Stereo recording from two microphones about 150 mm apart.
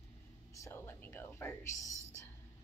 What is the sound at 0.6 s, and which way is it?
A woman's voice, 15° left (ahead or behind).